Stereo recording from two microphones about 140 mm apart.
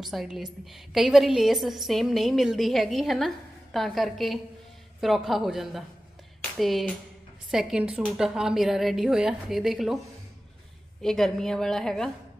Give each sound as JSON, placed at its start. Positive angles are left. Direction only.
{"t": 0.0, "sound": "a woman's voice", "side_deg": 0}
{"t": 11.0, "sound": "a woman's voice", "side_deg": 5}